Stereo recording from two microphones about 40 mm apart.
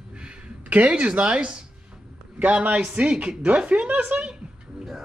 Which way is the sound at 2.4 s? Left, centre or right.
Right.